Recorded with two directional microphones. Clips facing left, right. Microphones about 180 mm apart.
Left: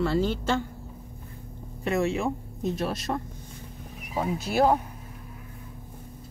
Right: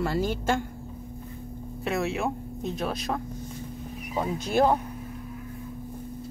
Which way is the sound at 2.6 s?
Centre (ahead or behind).